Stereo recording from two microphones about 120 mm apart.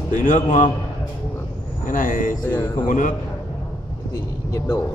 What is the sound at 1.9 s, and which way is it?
A man's voice, 90° left.